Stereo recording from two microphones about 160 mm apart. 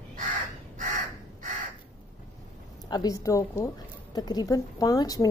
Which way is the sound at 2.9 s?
25° left (ahead or behind).